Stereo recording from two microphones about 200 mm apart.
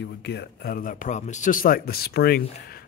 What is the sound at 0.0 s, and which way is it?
Speech, 60° left (ahead or behind).